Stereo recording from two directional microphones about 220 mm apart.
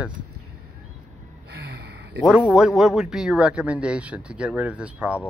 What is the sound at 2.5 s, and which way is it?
Speech, centre (ahead or behind).